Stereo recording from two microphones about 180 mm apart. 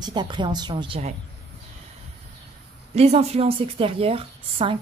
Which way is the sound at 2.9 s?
35° right (ahead or behind).